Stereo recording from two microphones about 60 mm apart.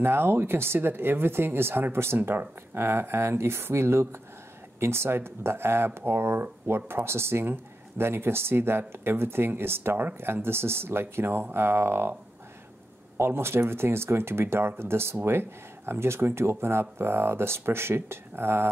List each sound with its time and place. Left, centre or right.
0.0 s speech: right
13.2 s speech: right